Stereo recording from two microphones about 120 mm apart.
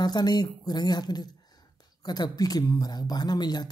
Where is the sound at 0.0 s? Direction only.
35° left (ahead or behind).